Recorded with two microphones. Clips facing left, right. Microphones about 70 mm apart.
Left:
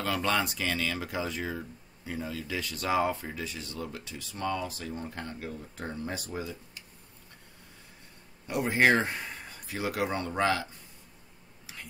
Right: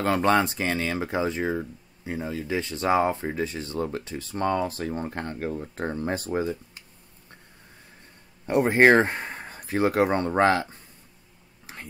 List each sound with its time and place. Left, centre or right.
0.0 s speech: right
8.5 s speech: right
11.6 s a sound: right